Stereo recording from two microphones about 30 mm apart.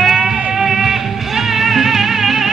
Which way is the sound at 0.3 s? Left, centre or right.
Centre.